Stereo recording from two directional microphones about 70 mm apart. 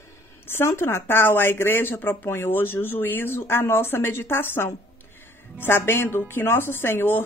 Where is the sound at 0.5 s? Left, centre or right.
Left.